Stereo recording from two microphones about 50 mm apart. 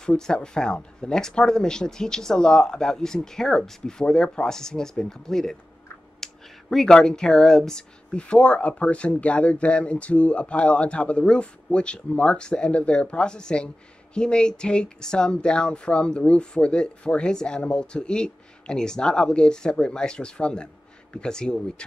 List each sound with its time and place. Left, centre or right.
0.0 s speech: centre
6.2 s a sound: centre
7.0 s speech: centre